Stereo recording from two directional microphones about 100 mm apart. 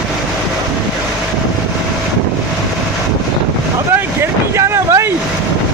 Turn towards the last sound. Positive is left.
turn(degrees=-30)  # may be behind; listen again after turning